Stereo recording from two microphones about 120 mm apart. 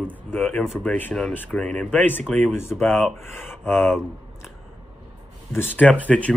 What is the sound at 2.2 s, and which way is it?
Speech, 5° left (ahead or behind).